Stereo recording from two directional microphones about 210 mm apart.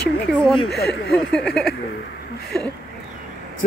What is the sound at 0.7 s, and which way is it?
Speech, centre (ahead or behind).